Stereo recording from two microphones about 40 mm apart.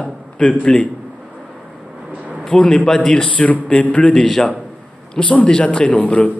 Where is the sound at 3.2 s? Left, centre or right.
Left.